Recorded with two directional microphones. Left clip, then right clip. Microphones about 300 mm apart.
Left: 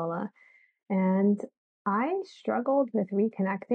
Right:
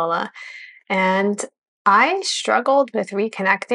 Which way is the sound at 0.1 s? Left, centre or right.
Centre.